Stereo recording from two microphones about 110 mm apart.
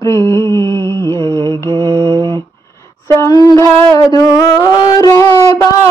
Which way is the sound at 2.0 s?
45° right (ahead or behind).